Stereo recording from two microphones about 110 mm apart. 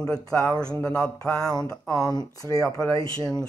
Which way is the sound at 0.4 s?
10° left (ahead or behind).